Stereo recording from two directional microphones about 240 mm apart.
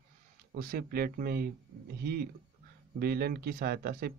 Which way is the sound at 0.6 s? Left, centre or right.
Right.